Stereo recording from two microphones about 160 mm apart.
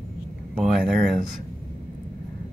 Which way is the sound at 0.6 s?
Centre (ahead or behind).